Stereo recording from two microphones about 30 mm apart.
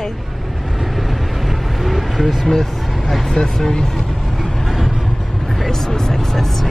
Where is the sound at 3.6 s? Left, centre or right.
Centre.